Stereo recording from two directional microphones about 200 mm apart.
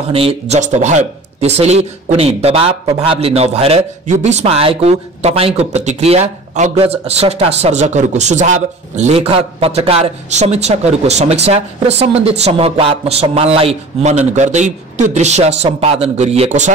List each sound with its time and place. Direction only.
0.1 s speech: 30° right (ahead or behind)